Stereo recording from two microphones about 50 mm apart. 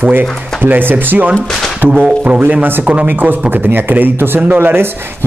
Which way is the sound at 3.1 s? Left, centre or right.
Right.